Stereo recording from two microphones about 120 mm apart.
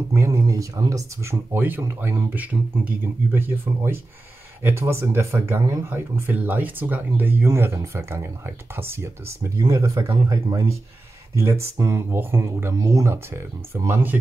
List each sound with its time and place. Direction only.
0.1 s speech: 25° right (ahead or behind)